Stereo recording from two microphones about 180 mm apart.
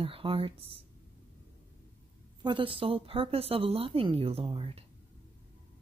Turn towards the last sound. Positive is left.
turn(degrees=-30)  # may be behind; listen again after turning